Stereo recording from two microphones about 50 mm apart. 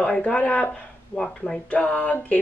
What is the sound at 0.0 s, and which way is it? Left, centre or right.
Speech, left.